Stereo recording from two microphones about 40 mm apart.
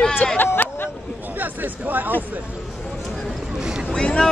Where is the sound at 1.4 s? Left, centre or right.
Right.